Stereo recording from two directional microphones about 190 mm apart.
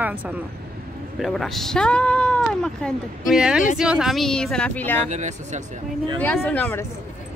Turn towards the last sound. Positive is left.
turn(degrees=10)  # may be behind; listen again after turning